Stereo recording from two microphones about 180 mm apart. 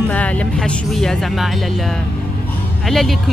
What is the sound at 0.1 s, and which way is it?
Speech, 10° left (ahead or behind).